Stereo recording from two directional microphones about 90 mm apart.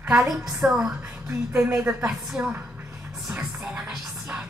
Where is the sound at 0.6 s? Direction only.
20° right (ahead or behind).